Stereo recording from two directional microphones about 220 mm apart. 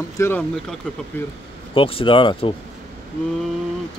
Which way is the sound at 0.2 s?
10° left (ahead or behind).